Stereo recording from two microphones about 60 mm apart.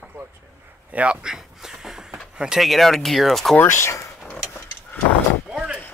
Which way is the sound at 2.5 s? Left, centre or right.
Centre.